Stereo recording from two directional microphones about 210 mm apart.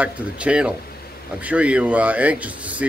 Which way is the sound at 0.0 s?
5° right (ahead or behind).